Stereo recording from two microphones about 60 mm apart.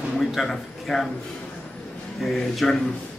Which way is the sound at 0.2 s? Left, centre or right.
Centre.